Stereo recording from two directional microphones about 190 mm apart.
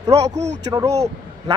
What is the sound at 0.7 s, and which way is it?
Speech, 20° right (ahead or behind).